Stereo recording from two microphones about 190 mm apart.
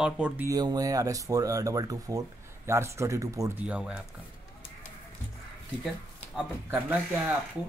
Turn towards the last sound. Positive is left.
turn(degrees=-10)  # may be behind; listen again after turning